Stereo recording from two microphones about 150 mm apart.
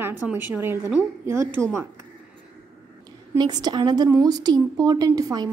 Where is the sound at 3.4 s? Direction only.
25° right (ahead or behind).